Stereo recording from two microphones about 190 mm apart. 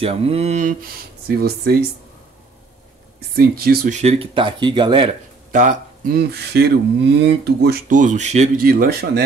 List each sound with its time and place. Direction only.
0.0 s a sound: 30° right (ahead or behind)
1.2 s speech: 55° right (ahead or behind)
3.3 s speech: 55° right (ahead or behind)
3.9 s speech: 35° right (ahead or behind)
5.5 s speech: 40° right (ahead or behind); by 7.8 s 60° right (ahead or behind)
7.9 s a sound: 40° right (ahead or behind)
8.6 s speech: 50° right (ahead or behind)